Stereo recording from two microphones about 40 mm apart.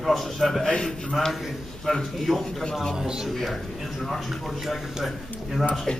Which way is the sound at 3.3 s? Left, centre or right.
Centre.